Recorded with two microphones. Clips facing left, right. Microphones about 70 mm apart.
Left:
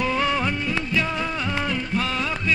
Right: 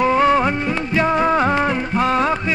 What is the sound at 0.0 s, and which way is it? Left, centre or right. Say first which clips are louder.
Music: right 8 dB; right.